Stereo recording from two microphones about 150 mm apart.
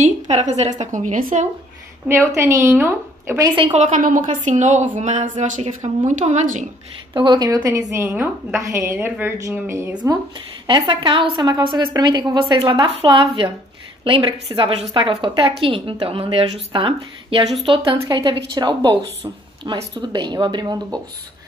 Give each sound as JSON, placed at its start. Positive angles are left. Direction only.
{"t": 0.0, "sound": "a woman's voice", "side_deg": -50}
{"t": 2.0, "sound": "a woman's voice", "side_deg": -15}
{"t": 3.4, "sound": "a woman's voice", "side_deg": -35}
{"t": 3.7, "sound": "a woman's voice", "side_deg": -55}
{"t": 7.2, "sound": "a woman's voice", "side_deg": -30}
{"t": 9.9, "sound": "a woman's voice", "side_deg": -30}